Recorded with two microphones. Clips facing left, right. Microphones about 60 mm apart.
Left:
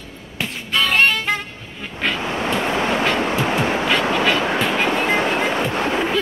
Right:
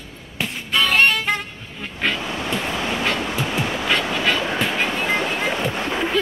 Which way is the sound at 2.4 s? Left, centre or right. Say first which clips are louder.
Left 4 dB; left.